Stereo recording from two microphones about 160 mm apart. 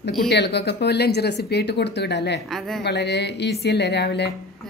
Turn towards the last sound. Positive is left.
turn(degrees=90)